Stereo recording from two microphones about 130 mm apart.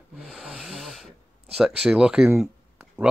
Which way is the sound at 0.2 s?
5° right (ahead or behind).